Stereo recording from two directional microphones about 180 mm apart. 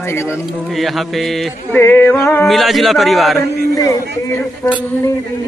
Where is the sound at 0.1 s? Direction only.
15° left (ahead or behind).